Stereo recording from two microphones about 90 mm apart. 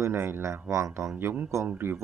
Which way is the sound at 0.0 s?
25° right (ahead or behind).